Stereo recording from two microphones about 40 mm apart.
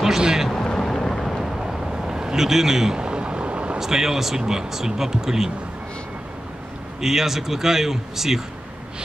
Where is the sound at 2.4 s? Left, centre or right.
Centre.